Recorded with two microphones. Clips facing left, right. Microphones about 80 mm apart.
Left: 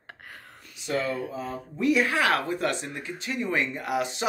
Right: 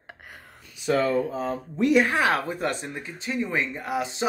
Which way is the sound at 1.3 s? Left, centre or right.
Right.